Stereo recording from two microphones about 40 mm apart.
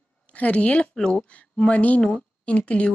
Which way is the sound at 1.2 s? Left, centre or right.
Left.